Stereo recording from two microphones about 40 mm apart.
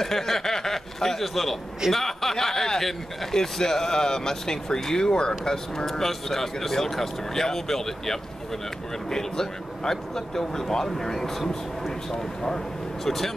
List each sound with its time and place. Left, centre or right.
0.0 s a man's voice: centre
5.9 s speech: centre
13.0 s speech: centre